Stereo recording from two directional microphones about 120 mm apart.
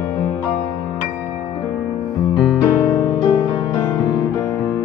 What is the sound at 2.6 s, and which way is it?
Music, 20° left (ahead or behind).